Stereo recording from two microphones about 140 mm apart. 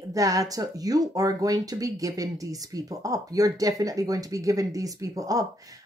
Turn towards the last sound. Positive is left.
turn(degrees=-25)  # may be behind; listen again after turning